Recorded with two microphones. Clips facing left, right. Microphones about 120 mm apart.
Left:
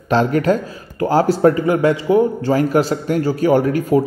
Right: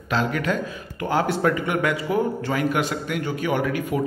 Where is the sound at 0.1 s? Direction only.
40° left (ahead or behind).